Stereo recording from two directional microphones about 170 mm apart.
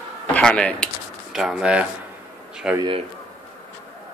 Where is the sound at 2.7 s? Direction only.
30° right (ahead or behind).